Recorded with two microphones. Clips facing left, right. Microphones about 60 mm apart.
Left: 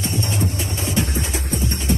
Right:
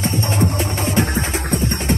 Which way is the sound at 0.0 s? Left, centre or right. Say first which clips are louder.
Right 4 dB; right.